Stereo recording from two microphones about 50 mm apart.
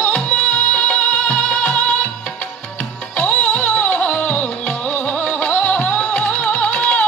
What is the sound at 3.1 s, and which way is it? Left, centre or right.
Music, left.